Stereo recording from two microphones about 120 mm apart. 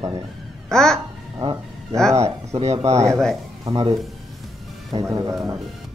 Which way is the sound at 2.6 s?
65° right (ahead or behind).